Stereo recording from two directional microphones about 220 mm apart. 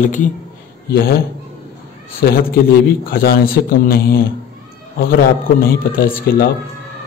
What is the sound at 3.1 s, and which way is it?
Speech, 40° left (ahead or behind).